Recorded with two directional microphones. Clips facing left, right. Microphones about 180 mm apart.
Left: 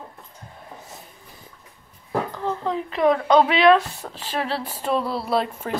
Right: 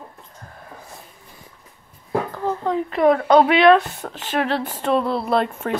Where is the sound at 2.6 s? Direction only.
45° right (ahead or behind).